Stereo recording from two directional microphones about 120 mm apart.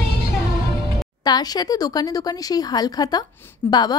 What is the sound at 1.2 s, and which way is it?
A woman's voice, 35° left (ahead or behind).